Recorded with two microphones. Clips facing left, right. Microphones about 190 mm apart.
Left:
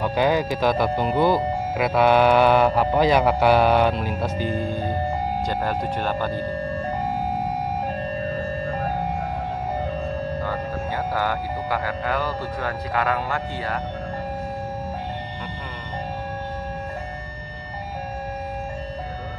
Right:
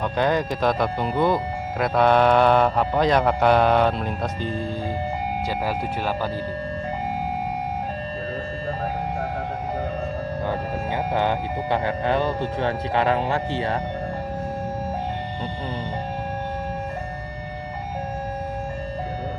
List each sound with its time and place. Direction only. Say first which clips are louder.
0.0 s speech: left 1 dB; 5° left (ahead or behind)
5.5 s speech: left 1 dB; 5° right (ahead or behind)
11.1 s speech: right 2 dB; 25° right (ahead or behind)